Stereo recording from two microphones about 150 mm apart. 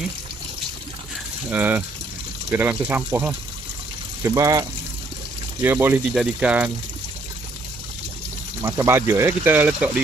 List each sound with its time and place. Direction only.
1.5 s speech: 10° right (ahead or behind)
8.6 s speech: 20° right (ahead or behind)